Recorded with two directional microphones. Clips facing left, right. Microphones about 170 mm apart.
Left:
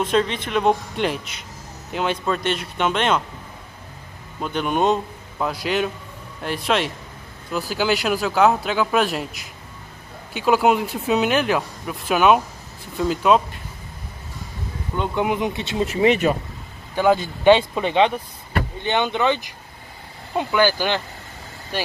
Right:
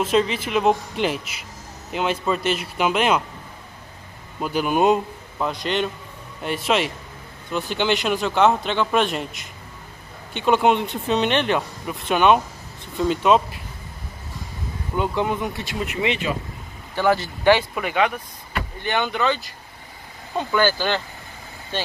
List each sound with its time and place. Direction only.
0.0 s speech: 5° right (ahead or behind)
4.4 s speech: 5° right (ahead or behind)
5.4 s speech: 5° left (ahead or behind)
14.9 s speech: 10° right (ahead or behind)
15.2 s speech: 20° left (ahead or behind)
16.1 s speech: 45° left (ahead or behind)
16.9 s speech: 15° left (ahead or behind)